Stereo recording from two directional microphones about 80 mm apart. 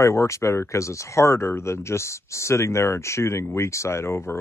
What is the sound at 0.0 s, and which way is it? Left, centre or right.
Speech, left.